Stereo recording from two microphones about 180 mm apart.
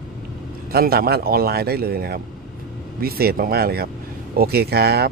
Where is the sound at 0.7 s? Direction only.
60° right (ahead or behind).